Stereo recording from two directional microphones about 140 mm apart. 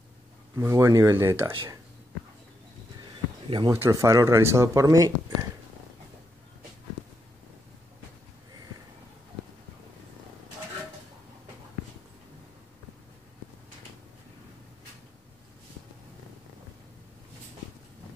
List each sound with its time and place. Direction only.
0.6 s speech: 20° right (ahead or behind)
3.4 s speech: 30° right (ahead or behind)
3.7 s speech: 20° right (ahead or behind)